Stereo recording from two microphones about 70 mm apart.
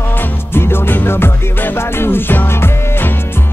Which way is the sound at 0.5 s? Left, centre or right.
Left.